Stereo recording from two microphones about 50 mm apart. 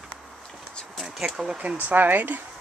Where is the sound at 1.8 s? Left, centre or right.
Right.